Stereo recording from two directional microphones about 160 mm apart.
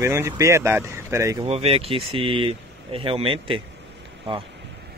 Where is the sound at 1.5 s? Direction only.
40° right (ahead or behind).